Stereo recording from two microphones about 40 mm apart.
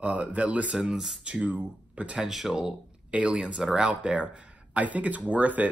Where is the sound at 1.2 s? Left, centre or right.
Right.